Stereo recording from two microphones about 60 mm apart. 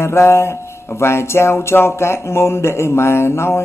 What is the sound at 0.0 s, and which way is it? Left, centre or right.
Speech, left.